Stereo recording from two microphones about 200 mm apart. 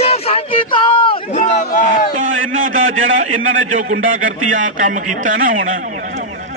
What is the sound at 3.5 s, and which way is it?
Speech, 85° right.